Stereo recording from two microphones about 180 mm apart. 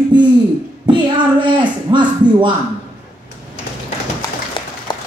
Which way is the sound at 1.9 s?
25° right (ahead or behind).